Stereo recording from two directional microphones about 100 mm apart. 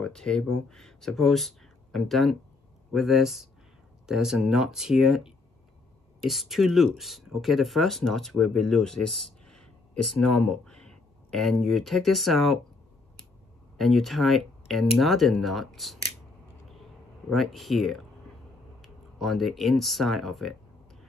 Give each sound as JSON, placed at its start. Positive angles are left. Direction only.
{"t": 0.0, "sound": "speech", "side_deg": 5}
{"t": 13.7, "sound": "speech", "side_deg": 0}
{"t": 17.3, "sound": "speech", "side_deg": 0}